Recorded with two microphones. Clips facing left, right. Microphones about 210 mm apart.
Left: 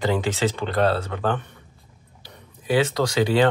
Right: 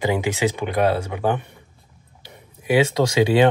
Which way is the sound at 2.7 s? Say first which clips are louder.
Right 3 dB; 20° right (ahead or behind).